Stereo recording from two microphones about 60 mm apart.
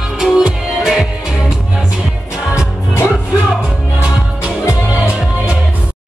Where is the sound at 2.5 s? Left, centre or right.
Left.